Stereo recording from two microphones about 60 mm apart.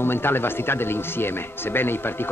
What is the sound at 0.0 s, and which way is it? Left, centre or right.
Speech, left.